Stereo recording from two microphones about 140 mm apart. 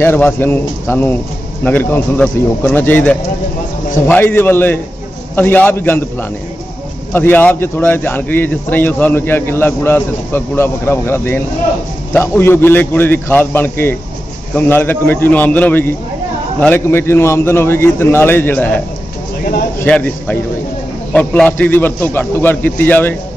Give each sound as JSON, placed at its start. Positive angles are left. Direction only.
{"t": 0.0, "sound": "a man's voice", "side_deg": 15}
{"t": 7.1, "sound": "a man's voice", "side_deg": 15}
{"t": 19.8, "sound": "a man's voice", "side_deg": 10}